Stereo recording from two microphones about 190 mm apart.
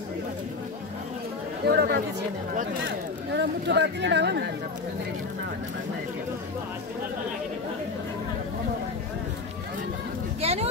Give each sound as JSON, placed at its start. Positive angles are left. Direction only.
{"t": 1.7, "sound": "speech", "side_deg": -60}
{"t": 10.4, "sound": "speech", "side_deg": -35}